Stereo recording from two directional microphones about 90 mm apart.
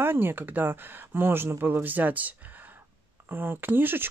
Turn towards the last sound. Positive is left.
turn(degrees=-25)  # may be behind; listen again after turning